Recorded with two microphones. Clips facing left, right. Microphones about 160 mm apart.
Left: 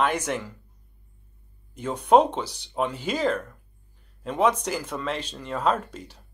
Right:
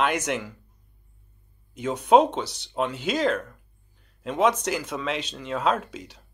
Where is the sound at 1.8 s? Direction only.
5° right (ahead or behind).